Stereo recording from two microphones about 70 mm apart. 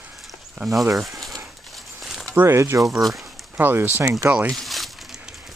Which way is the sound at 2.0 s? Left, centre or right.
Centre.